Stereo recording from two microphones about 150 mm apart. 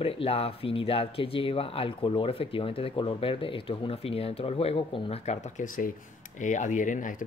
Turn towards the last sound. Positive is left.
turn(degrees=60)  # may be behind; listen again after turning